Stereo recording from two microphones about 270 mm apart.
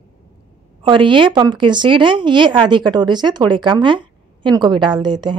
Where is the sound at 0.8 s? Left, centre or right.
Centre.